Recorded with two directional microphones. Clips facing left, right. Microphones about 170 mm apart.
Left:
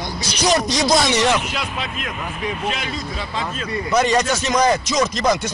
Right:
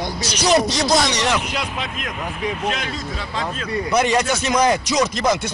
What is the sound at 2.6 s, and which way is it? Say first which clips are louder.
Speech: right 1 dB; 10° left (ahead or behind).